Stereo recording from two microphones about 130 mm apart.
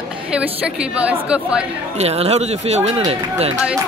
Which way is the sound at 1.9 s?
55° right (ahead or behind).